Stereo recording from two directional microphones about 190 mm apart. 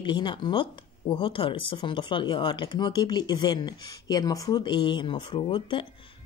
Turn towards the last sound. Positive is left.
turn(degrees=25)  # may be behind; listen again after turning